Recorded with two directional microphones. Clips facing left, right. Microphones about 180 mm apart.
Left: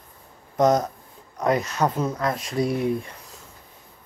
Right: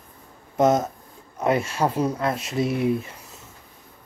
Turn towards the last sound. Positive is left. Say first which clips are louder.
# right 2 dB
turn(degrees=-5)  # may be behind; listen again after turning